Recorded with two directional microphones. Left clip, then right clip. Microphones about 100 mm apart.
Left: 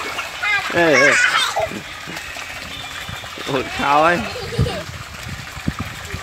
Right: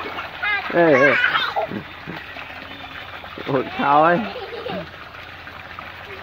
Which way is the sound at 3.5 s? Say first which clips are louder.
Even; 20° left (ahead or behind).